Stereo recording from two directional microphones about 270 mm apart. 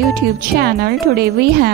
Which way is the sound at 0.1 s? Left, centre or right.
Right.